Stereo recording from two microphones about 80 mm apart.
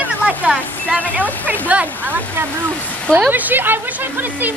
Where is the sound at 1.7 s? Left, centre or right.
Right.